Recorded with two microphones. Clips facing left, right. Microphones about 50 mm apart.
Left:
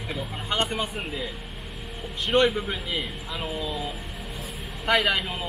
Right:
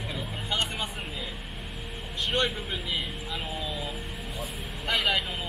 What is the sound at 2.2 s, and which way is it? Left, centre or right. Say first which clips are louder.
A man's voice: left 7 dB; centre.